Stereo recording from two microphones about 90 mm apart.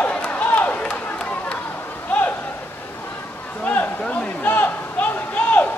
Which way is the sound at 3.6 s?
20° left (ahead or behind).